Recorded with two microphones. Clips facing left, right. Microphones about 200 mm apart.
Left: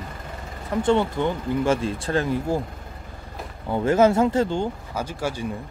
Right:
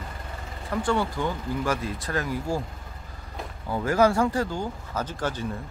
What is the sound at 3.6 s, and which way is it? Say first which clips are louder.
Speech: left 4 dB; 25° left (ahead or behind).